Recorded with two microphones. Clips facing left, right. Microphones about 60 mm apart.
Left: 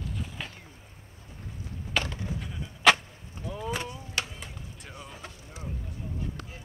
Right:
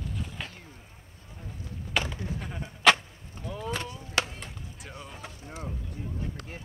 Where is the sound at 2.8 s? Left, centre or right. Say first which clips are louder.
Even; centre.